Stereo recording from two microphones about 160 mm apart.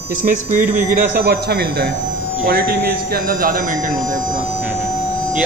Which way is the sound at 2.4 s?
70° right (ahead or behind).